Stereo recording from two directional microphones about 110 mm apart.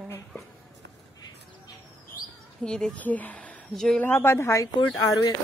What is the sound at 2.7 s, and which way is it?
Speech, 5° left (ahead or behind).